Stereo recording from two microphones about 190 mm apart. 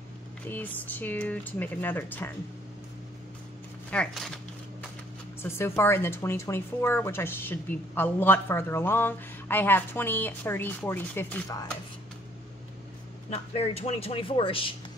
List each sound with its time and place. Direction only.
0.5 s speech: 10° left (ahead or behind)
3.9 s speech: 5° left (ahead or behind)
5.4 s speech: 10° left (ahead or behind)
13.3 s speech: 35° left (ahead or behind)